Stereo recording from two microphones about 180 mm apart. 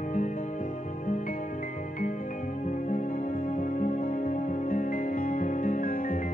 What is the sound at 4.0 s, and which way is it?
Music, 50° left (ahead or behind).